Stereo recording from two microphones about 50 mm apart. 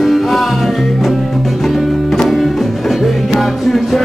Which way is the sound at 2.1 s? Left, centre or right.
Centre.